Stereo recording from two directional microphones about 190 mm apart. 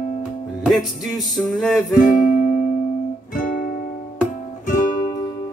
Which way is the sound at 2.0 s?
45° left (ahead or behind).